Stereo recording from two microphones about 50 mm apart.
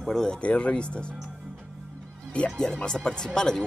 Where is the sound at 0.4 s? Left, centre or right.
Left.